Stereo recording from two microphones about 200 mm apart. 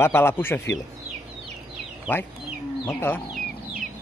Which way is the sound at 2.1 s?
10° left (ahead or behind).